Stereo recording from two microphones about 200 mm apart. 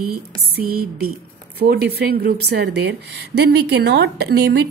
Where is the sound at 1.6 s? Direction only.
55° right (ahead or behind).